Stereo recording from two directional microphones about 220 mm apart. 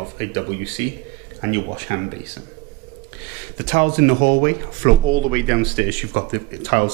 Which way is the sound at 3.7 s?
15° right (ahead or behind).